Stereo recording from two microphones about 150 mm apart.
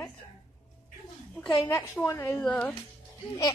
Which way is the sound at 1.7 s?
15° left (ahead or behind).